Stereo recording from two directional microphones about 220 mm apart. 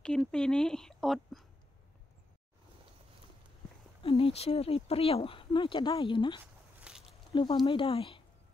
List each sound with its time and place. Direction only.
0.0 s speech: 5° left (ahead or behind)
4.0 s speech: 25° left (ahead or behind)
6.8 s a sound: 5° right (ahead or behind)
7.3 s speech: 20° left (ahead or behind)